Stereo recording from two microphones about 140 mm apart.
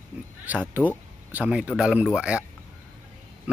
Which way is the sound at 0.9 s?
10° right (ahead or behind).